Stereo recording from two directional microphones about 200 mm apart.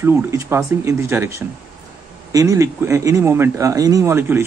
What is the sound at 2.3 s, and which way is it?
Speech, 15° right (ahead or behind).